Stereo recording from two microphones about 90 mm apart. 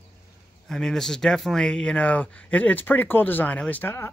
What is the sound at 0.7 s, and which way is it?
Speech, 5° left (ahead or behind).